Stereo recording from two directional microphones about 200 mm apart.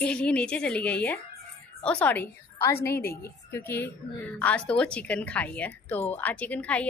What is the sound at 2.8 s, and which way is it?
Speech, 50° left (ahead or behind).